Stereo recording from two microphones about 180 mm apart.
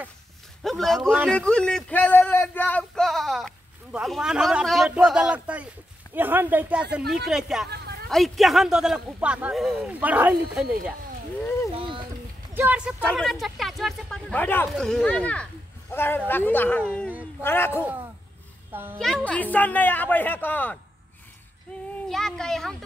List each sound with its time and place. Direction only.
0.6 s a man's voice: centre (ahead or behind)
1.3 s speech: 5° left (ahead or behind)
7.7 s a sound: 65° right (ahead or behind)
8.1 s speech: centre (ahead or behind)
11.7 s a sound: 30° right (ahead or behind)
12.5 s speech: 10° right (ahead or behind)
13.0 s a woman's voice: 5° left (ahead or behind)
18.7 s a child's voice: 10° right (ahead or behind)
18.9 s a woman's voice: centre (ahead or behind)
22.1 s speech: 5° left (ahead or behind)